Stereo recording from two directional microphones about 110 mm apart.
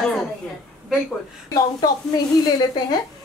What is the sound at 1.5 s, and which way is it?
Speech, 35° left (ahead or behind).